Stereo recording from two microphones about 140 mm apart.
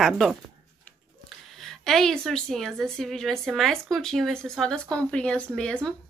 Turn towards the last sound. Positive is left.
turn(degrees=5)  # may be behind; listen again after turning